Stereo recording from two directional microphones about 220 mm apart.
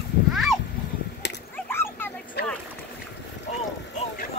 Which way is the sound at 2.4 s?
45° left (ahead or behind).